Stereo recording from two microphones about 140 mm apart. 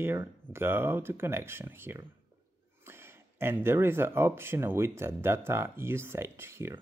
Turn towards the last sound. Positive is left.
turn(degrees=-15)  # may be behind; listen again after turning